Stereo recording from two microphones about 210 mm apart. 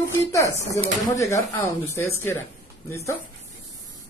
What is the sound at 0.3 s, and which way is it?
Speech, 15° left (ahead or behind).